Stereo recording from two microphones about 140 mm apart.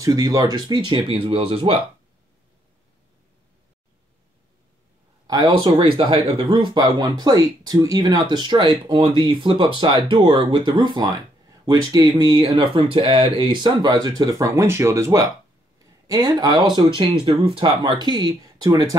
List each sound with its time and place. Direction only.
0.0 s speech: 25° right (ahead or behind); by 1.8 s 40° right (ahead or behind)
5.2 s speech: 30° right (ahead or behind)